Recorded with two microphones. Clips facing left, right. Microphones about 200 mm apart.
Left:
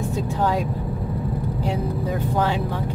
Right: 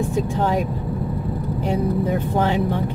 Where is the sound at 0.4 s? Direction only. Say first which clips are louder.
Left 2 dB; 20° right (ahead or behind).